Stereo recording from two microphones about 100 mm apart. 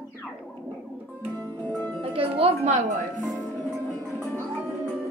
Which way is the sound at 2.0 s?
70° right (ahead or behind).